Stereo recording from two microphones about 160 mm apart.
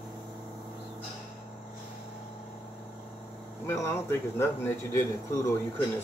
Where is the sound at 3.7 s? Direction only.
15° left (ahead or behind).